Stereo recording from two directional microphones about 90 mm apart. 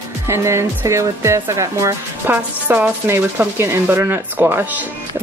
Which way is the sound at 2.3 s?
25° right (ahead or behind).